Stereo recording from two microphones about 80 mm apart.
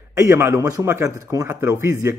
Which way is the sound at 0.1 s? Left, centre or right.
Right.